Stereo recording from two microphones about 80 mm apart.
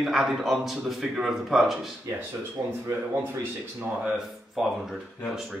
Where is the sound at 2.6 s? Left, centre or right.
Right.